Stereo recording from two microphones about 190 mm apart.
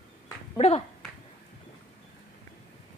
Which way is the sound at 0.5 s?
35° left (ahead or behind).